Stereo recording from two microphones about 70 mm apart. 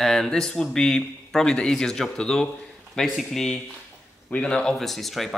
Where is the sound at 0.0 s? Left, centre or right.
Centre.